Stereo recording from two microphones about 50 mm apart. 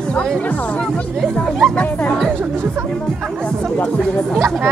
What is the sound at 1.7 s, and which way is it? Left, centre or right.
Speech, left.